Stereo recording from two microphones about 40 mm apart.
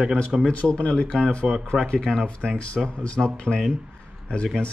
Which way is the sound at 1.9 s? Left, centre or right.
Left.